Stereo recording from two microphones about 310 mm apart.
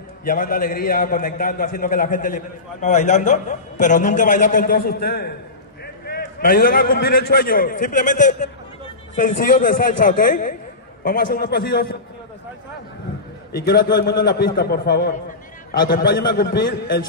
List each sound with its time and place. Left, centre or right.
0.2 s a man's voice: left
13.5 s a man's voice: left